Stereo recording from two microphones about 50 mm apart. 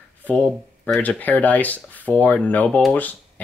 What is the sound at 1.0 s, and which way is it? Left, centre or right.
Speech, left.